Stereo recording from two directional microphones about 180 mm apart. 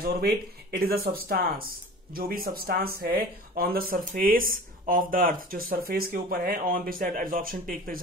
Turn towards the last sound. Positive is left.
turn(degrees=-50)  # may be behind; listen again after turning